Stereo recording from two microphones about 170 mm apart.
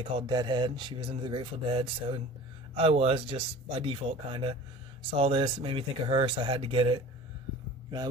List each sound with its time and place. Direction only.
0.0 s speech: 25° right (ahead or behind)